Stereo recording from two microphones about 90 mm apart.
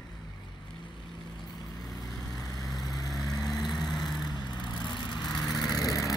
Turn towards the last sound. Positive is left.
turn(degrees=35)  # may be behind; listen again after turning